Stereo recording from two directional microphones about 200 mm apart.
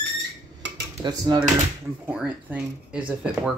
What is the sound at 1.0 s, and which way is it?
Speech, 20° right (ahead or behind).